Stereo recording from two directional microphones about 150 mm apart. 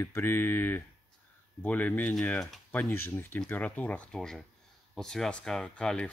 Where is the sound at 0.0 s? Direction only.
15° left (ahead or behind).